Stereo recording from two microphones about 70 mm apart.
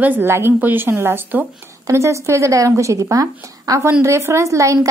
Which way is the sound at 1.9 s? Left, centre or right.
Right.